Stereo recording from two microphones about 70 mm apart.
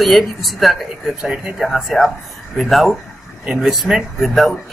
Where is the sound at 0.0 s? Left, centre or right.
Centre.